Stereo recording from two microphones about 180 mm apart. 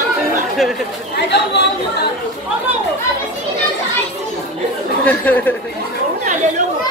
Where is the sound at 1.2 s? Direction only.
70° left (ahead or behind).